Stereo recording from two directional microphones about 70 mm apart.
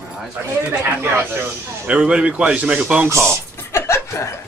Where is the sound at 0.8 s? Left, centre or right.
Right.